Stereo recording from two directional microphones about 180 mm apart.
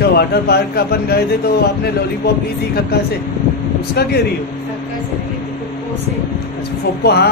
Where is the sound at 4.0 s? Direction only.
65° left (ahead or behind).